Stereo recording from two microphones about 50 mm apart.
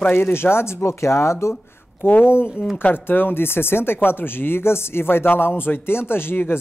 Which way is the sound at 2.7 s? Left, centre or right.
Left.